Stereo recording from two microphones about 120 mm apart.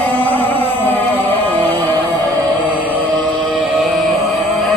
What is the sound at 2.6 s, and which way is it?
Music, 15° right (ahead or behind).